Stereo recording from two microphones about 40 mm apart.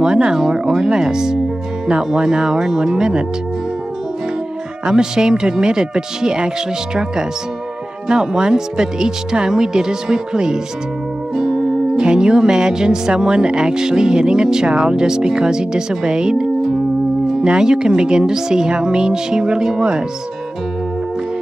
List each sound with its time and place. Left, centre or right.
0.0 s speech: centre
4.8 s speech: centre
8.1 s speech: centre